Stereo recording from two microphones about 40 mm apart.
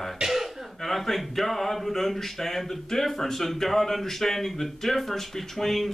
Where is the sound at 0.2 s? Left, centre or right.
Centre.